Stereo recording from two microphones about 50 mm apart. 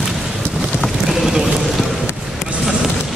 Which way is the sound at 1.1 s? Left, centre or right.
Centre.